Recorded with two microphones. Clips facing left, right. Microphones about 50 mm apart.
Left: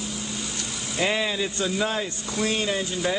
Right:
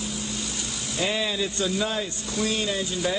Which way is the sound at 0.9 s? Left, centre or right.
Left.